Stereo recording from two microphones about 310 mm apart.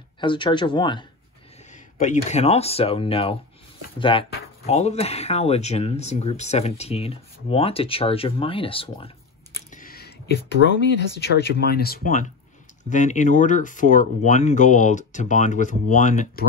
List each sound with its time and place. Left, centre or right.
0.2 s speech: centre